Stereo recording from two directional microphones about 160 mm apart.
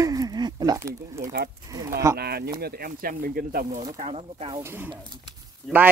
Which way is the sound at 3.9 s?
45° right (ahead or behind).